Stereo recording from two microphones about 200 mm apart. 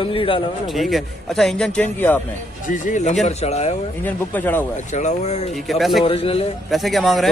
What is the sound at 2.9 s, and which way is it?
Speech, 35° left (ahead or behind).